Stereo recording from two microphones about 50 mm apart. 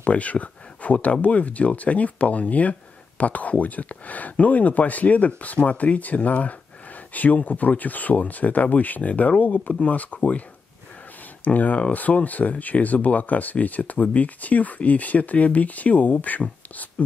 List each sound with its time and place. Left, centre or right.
0.0 s speech: left
11.4 s speech: left